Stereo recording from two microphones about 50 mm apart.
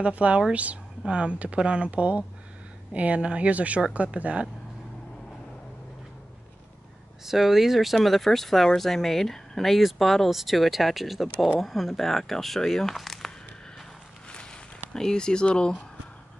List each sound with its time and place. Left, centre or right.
0.0 s speech: right
7.2 s speech: centre
14.3 s a sound: centre